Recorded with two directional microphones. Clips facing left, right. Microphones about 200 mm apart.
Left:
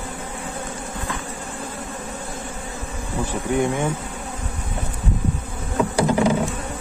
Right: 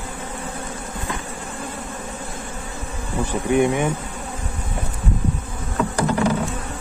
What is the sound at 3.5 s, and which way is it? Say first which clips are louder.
Speech: right 3 dB; 20° right (ahead or behind).